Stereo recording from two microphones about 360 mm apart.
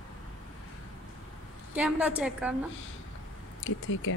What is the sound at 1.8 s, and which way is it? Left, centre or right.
Speech, centre.